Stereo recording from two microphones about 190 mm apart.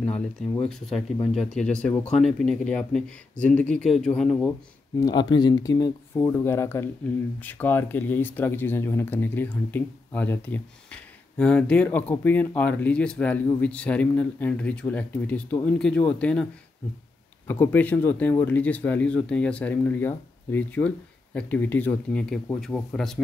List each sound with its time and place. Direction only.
0.7 s speech: centre (ahead or behind)
5.0 s speech: 25° left (ahead or behind); by 16.4 s 5° left (ahead or behind)
17.5 s speech: 10° left (ahead or behind)